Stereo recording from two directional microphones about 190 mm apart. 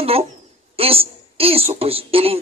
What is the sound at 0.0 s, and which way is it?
A woman's voice, 30° right (ahead or behind).